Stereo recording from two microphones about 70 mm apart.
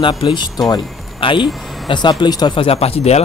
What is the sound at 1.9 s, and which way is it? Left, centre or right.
Speech, left.